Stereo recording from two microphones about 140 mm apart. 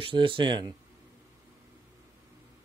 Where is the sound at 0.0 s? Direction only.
40° right (ahead or behind).